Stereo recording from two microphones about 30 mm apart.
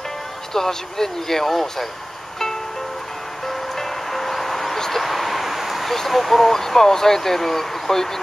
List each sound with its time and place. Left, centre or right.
0.5 s speech: centre
3.4 s music: centre
5.0 s a sound: centre
5.9 s speech: centre